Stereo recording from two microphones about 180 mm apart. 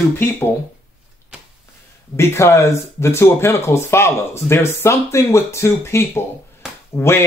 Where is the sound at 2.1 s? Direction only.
15° left (ahead or behind).